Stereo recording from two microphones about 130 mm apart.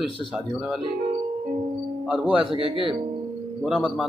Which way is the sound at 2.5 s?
45° right (ahead or behind).